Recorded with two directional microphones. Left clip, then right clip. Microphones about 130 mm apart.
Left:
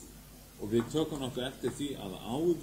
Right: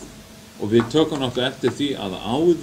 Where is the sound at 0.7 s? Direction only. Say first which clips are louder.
Right 13 dB; 25° left (ahead or behind).